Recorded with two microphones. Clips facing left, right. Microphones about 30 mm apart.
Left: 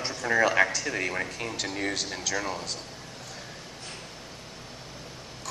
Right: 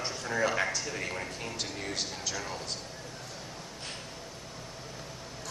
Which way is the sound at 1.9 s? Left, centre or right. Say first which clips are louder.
Left 5 dB; left.